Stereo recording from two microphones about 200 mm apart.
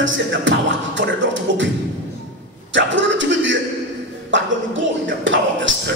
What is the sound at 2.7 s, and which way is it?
Music, 70° right (ahead or behind).